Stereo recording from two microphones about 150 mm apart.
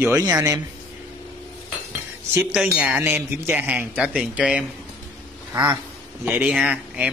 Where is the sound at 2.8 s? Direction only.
10° right (ahead or behind).